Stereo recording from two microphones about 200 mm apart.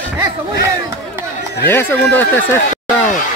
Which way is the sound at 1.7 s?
10° left (ahead or behind).